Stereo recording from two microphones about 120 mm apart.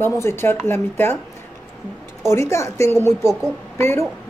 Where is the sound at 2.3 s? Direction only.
25° left (ahead or behind).